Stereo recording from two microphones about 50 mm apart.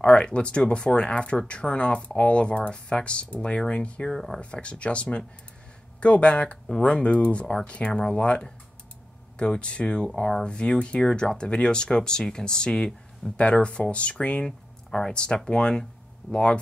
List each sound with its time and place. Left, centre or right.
0.0 s speech: left
4.1 s speech: centre
4.4 s speech: left